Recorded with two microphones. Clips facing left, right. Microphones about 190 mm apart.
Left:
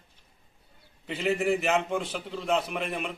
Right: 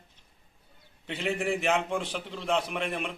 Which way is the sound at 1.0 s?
Centre (ahead or behind).